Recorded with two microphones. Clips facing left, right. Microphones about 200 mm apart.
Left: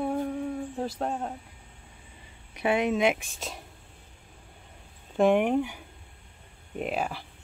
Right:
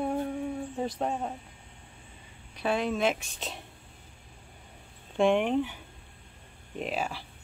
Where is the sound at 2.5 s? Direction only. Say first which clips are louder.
Left 3 dB; 20° left (ahead or behind).